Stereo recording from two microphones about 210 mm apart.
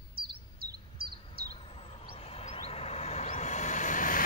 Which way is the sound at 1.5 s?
25° left (ahead or behind).